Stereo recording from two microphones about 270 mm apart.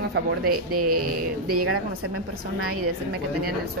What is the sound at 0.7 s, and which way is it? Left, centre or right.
Speech, right.